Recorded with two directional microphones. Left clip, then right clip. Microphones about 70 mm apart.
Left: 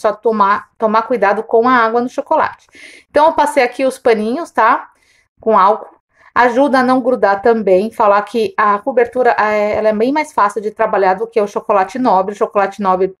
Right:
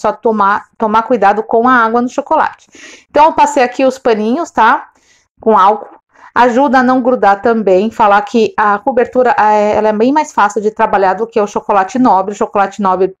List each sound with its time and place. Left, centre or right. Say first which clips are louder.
0.0 s a woman's voice: right 2 dB; right